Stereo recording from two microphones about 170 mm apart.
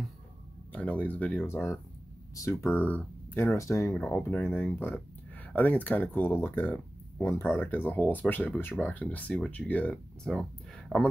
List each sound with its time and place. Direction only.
0.7 s speech: 10° left (ahead or behind)